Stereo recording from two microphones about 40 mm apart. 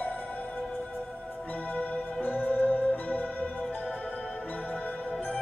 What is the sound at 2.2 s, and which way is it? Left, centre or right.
Music, left.